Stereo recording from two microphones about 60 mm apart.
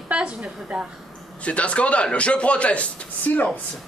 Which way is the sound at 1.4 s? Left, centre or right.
Left.